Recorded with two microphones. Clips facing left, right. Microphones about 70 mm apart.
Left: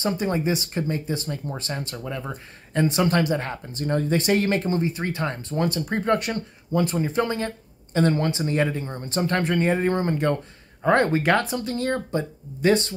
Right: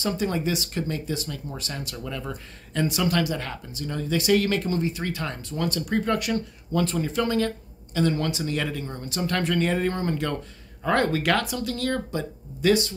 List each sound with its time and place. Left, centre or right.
0.0 s speech: left
3.7 s speech: left
6.7 s speech: left